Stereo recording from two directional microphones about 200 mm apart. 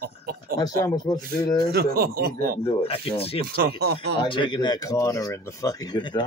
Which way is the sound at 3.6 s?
50° right (ahead or behind).